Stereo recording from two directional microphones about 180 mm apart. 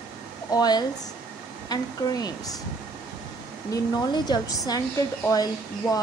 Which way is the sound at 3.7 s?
20° left (ahead or behind).